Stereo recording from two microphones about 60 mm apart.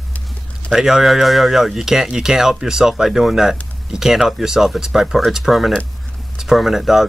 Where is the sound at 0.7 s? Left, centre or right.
Centre.